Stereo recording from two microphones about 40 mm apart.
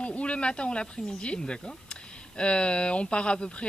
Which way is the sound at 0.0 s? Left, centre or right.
Left.